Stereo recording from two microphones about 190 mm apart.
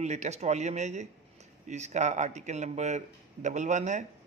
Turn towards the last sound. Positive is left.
turn(degrees=-40)  # may be behind; listen again after turning